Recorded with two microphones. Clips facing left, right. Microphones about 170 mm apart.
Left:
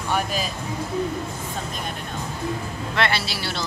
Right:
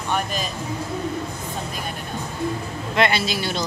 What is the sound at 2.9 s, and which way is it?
Speech, 15° right (ahead or behind).